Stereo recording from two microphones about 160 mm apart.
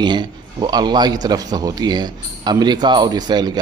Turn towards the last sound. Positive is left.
turn(degrees=-25)  # may be behind; listen again after turning